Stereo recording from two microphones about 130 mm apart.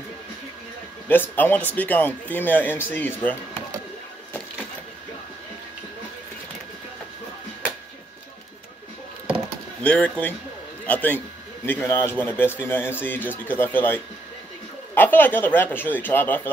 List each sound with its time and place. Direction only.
1.0 s speech: 15° left (ahead or behind)
9.8 s speech: 10° left (ahead or behind)